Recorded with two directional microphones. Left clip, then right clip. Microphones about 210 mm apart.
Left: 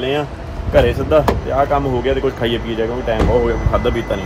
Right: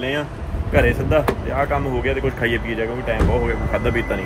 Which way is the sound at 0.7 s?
20° left (ahead or behind).